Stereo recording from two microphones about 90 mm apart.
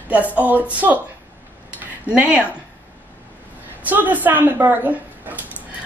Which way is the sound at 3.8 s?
20° right (ahead or behind).